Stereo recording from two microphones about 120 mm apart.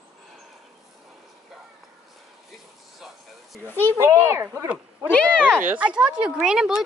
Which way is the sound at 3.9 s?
20° right (ahead or behind).